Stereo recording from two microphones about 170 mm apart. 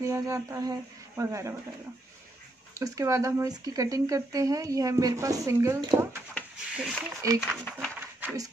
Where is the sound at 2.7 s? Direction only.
20° right (ahead or behind).